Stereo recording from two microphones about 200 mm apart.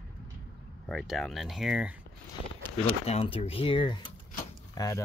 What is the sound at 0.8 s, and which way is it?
Speech, centre (ahead or behind).